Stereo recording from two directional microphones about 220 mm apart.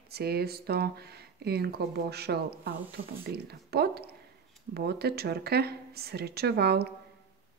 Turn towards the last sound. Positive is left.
turn(degrees=-45)  # may be behind; listen again after turning